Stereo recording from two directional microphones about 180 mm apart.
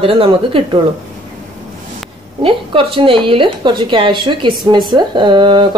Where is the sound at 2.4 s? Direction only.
30° right (ahead or behind).